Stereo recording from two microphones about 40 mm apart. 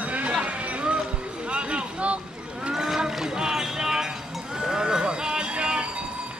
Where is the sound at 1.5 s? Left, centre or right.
Right.